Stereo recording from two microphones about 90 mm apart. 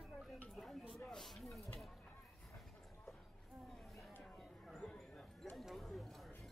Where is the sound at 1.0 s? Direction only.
5° left (ahead or behind).